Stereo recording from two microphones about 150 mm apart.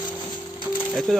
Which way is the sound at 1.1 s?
5° left (ahead or behind).